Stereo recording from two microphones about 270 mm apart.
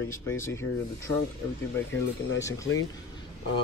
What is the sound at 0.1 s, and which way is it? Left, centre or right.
Speech, centre.